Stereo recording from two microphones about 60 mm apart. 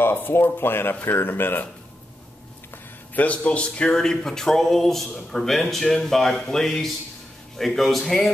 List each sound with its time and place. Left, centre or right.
0.0 s speech: left
3.2 s speech: left; by 8.3 s centre